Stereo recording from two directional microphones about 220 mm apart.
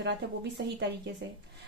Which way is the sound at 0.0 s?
50° right (ahead or behind).